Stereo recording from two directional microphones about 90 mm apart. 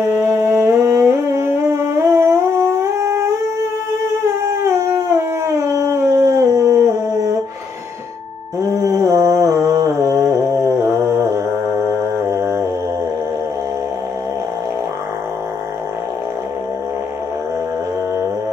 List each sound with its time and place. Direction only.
0.0 s humming: 25° right (ahead or behind)
2.8 s howl: 30° right (ahead or behind)
8.7 s music: 30° right (ahead or behind)